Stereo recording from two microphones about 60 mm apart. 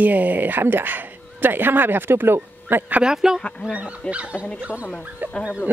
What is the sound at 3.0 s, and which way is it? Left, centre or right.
A woman's voice, centre.